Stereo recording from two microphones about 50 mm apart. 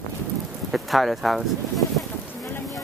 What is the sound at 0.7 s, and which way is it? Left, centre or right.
Speech, centre.